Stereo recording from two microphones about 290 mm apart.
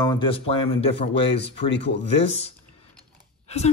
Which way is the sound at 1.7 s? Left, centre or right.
Left.